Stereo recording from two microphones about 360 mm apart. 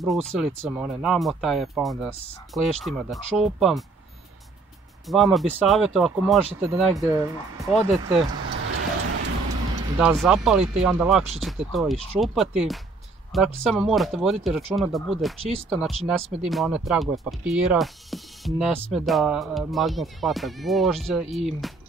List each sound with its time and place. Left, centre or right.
0.0 s speech: centre
5.0 s speech: centre
8.5 s a sound: right
9.9 s speech: centre